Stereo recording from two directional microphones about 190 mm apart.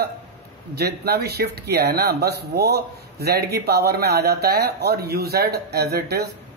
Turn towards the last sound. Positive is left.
turn(degrees=-55)  # may be behind; listen again after turning